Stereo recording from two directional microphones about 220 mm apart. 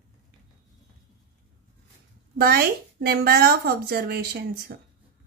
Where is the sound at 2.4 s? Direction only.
45° right (ahead or behind).